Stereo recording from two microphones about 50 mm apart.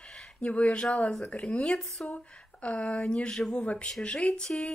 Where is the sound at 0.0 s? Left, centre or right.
Centre.